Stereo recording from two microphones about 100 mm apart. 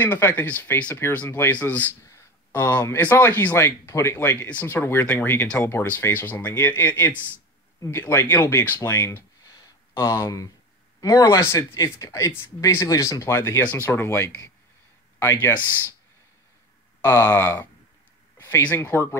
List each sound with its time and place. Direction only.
0.0 s speech: 20° left (ahead or behind)
4.4 s speech: 15° left (ahead or behind)
9.5 s a sound: 35° left (ahead or behind)
11.0 s speech: 35° left (ahead or behind)
15.4 s speech: 20° left (ahead or behind)
17.1 s speech: 40° left (ahead or behind)
17.4 s speech: 25° left (ahead or behind)
18.7 s speech: 25° left (ahead or behind)